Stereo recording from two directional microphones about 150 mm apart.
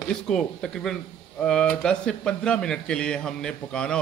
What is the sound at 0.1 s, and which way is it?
Speech, 5° left (ahead or behind).